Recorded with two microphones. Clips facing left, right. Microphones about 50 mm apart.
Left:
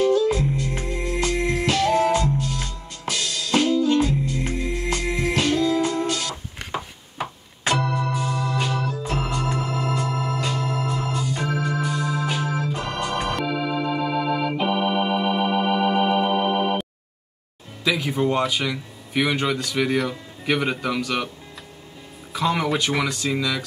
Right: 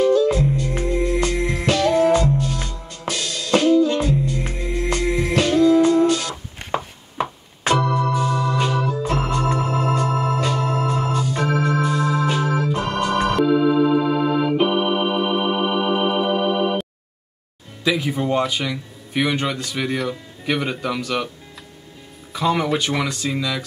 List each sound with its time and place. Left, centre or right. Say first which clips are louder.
0.0 s music: right 3 dB; right
7.8 s organ: right 5 dB; right
9.0 s organ: right 4 dB; right
16.3 s music: right 2 dB; left
17.8 s speech: right 1 dB; centre
22.3 s speech: right 2 dB; centre